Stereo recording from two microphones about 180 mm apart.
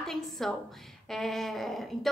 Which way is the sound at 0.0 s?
Centre (ahead or behind).